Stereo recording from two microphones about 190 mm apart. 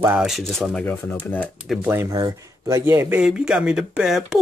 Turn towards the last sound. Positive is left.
turn(degrees=0)  # may be behind; listen again after turning